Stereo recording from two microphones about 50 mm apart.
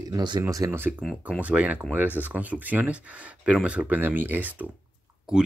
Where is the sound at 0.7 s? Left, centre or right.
Right.